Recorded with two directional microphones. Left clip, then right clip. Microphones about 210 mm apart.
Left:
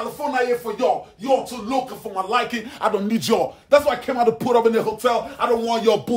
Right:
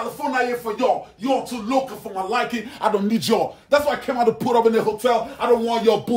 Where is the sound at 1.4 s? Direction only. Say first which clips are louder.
Right 2 dB; 50° left (ahead or behind).